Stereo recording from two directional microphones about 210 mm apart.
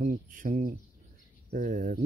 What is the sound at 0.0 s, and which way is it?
Speech, 40° right (ahead or behind).